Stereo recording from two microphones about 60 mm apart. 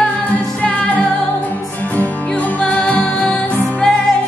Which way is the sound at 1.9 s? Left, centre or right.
Left.